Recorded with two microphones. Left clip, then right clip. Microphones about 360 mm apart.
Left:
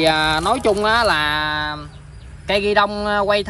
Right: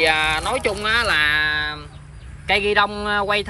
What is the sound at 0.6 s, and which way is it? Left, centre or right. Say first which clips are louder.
Speech: left 4 dB; centre.